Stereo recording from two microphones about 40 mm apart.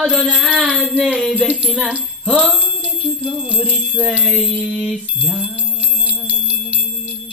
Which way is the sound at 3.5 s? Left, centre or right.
Right.